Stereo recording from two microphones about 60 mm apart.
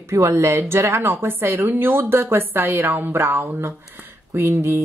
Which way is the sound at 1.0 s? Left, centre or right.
Right.